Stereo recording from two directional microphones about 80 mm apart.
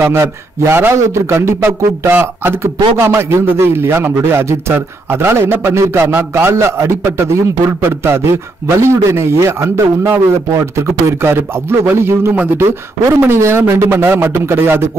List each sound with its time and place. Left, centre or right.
0.0 s a man's voice: right